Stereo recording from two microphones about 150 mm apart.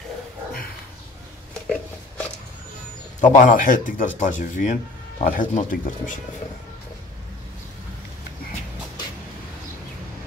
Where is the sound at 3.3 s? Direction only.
65° left (ahead or behind).